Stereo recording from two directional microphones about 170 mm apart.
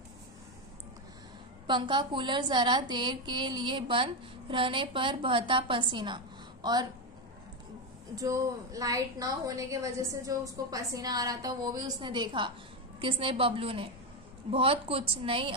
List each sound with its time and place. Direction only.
1.7 s a woman's voice: 30° right (ahead or behind)
8.2 s a woman's voice: 20° right (ahead or behind)